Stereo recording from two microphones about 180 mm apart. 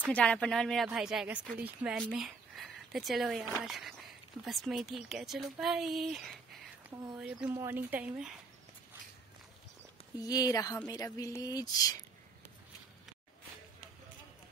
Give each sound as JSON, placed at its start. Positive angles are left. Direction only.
{"t": 0.1, "sound": "speech", "side_deg": 5}
{"t": 10.1, "sound": "speech", "side_deg": 20}